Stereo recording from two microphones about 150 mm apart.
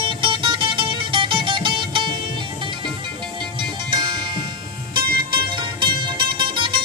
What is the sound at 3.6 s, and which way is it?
Music, 35° right (ahead or behind).